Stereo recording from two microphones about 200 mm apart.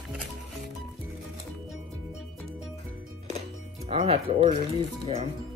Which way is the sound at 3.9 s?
30° right (ahead or behind).